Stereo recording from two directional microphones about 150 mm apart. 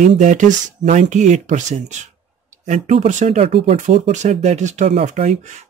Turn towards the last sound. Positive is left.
turn(degrees=-55)  # may be behind; listen again after turning